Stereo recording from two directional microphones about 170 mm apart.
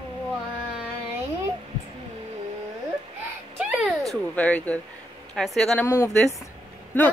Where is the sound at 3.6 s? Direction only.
5° right (ahead or behind).